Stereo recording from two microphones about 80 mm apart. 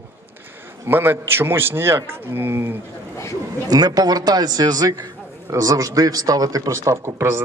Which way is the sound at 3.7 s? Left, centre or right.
Right.